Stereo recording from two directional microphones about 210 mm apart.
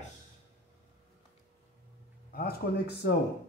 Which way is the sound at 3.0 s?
50° left (ahead or behind).